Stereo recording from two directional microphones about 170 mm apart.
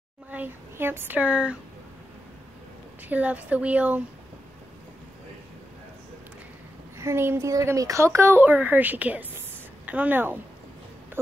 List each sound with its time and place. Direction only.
0.3 s speech: 10° right (ahead or behind)
3.1 s speech: 10° right (ahead or behind)
7.0 s speech: 15° right (ahead or behind)